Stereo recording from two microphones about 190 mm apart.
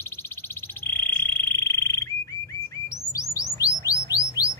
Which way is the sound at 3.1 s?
15° left (ahead or behind).